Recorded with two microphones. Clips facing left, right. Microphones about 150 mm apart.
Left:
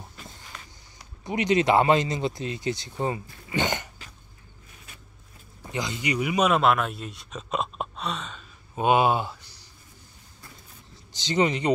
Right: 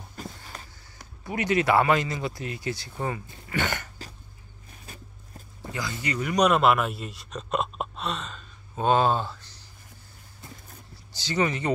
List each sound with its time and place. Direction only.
0.1 s a sound: 45° right (ahead or behind)
1.2 s speech: 20° left (ahead or behind)
3.4 s a sound: 20° left (ahead or behind)
5.7 s speech: 20° left (ahead or behind); by 8.5 s centre (ahead or behind)
8.7 s speech: 15° left (ahead or behind)
11.1 s speech: 20° left (ahead or behind)